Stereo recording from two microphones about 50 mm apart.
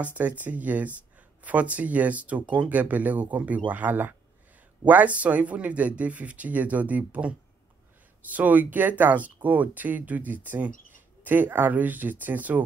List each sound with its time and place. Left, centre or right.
0.0 s speech: right